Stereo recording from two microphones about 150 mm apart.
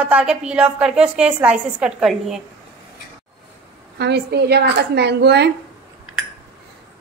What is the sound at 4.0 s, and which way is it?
A woman's voice, 90° right.